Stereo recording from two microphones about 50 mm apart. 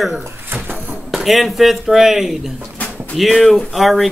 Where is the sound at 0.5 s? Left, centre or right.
Right.